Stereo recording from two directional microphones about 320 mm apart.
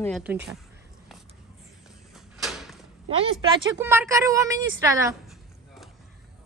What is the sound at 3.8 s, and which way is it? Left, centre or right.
A woman's voice, centre.